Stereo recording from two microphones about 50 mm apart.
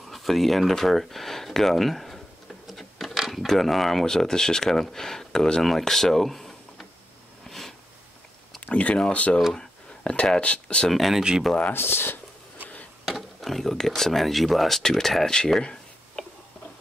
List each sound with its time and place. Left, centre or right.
0.1 s speech: centre
2.6 s a sound: centre
3.2 s speech: centre
7.4 s a sound: centre
8.5 s speech: left
9.5 s a sound: centre
10.1 s speech: left
10.9 s speech: centre
11.7 s speech: left
13.0 s speech: centre